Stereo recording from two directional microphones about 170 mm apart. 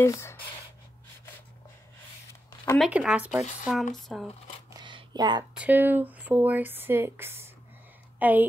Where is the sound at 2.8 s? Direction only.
5° right (ahead or behind).